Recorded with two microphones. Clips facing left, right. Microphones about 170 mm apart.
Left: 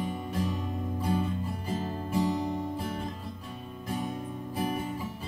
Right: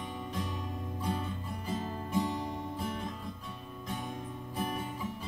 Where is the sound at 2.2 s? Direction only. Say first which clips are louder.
Left 6 dB; 40° left (ahead or behind).